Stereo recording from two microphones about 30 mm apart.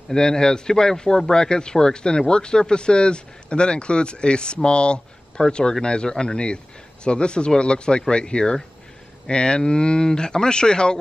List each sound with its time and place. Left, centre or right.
0.1 s speech: left
5.4 s speech: left